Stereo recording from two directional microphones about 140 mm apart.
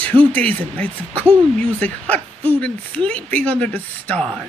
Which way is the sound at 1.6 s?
10° left (ahead or behind).